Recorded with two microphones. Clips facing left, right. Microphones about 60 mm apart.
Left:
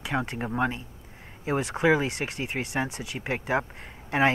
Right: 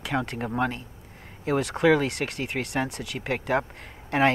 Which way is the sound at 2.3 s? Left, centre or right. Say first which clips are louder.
Right 1 dB; right.